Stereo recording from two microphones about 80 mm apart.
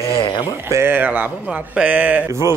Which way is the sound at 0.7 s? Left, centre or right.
Right.